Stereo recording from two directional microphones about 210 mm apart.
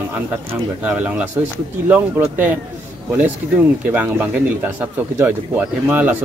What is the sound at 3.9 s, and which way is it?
A man's voice, 5° right (ahead or behind).